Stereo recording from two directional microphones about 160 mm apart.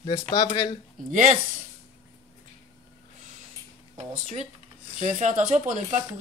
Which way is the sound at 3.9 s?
45° right (ahead or behind).